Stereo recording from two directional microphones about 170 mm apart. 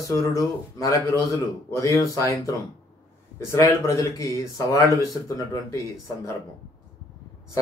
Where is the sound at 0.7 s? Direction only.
20° left (ahead or behind).